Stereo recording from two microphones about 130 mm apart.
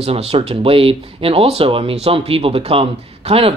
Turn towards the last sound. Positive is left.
turn(degrees=-50)  # may be behind; listen again after turning